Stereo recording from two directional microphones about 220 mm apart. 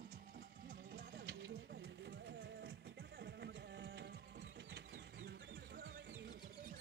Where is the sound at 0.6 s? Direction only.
50° right (ahead or behind).